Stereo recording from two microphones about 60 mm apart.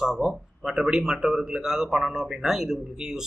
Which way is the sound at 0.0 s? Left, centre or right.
Centre.